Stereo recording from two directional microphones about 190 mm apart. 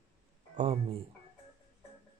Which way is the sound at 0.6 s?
30° right (ahead or behind).